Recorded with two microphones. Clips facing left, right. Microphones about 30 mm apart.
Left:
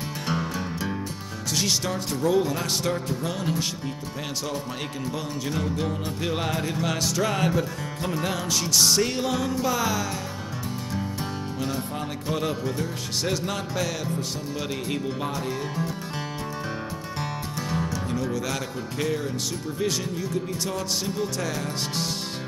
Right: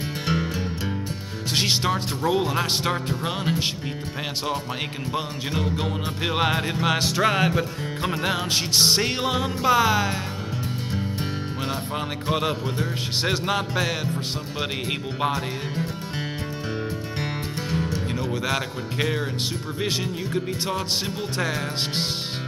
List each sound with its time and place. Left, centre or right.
0.3 s music: right
1.5 s speech: right
5.1 s speech: right
17.6 s music: right
18.3 s speech: right